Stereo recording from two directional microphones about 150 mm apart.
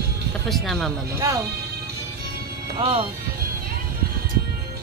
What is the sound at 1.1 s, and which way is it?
Speech, 20° right (ahead or behind).